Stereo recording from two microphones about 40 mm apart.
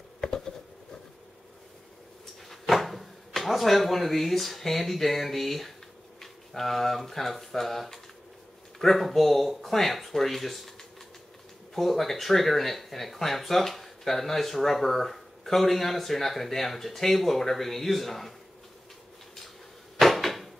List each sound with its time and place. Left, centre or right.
0.2 s a sound: centre
2.5 s speech: centre
20.0 s cupboard open or close: centre